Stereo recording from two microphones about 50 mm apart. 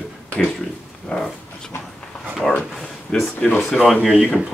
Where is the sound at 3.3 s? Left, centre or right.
Left.